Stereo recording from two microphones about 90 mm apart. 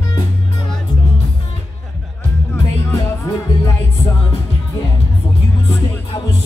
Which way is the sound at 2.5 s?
35° left (ahead or behind).